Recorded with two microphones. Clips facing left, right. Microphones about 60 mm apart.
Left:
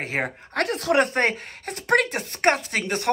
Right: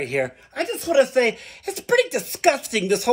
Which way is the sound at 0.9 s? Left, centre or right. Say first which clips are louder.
Right 4 dB; left.